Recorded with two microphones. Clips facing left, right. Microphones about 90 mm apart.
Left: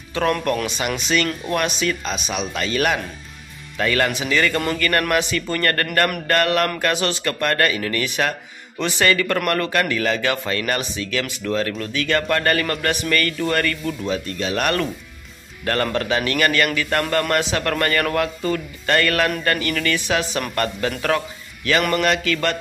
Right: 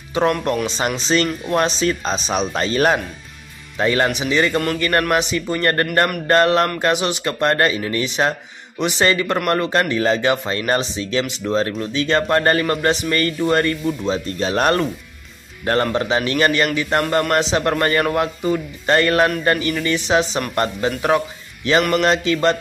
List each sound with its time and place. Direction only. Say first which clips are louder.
0.2 s speech: right 3 dB; 20° right (ahead or behind)
0.7 s speech: right 3 dB; 30° right (ahead or behind)
15.6 s speech: right 3 dB; 25° right (ahead or behind)
21.9 s speech: right 3 dB; 25° right (ahead or behind)